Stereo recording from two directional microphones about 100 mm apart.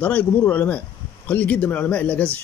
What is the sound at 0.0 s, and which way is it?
Speech, 15° left (ahead or behind).